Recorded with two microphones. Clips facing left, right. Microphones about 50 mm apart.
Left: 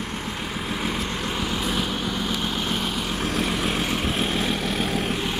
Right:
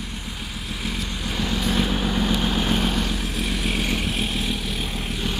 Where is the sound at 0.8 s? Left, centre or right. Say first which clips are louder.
Left 1 dB; left.